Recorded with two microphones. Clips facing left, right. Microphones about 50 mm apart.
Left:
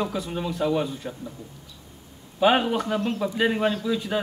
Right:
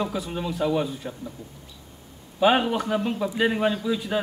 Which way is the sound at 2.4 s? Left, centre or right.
Centre.